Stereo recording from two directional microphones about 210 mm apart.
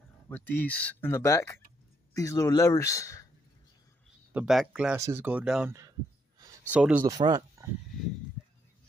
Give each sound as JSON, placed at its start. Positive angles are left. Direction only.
{"t": 0.3, "sound": "speech", "side_deg": 10}
{"t": 4.3, "sound": "speech", "side_deg": -5}
{"t": 7.0, "sound": "speech", "side_deg": -20}